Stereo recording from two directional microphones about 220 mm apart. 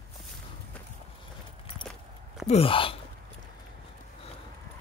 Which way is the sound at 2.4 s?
25° left (ahead or behind).